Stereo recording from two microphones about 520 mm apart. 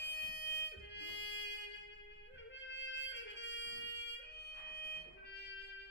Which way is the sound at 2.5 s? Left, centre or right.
Left.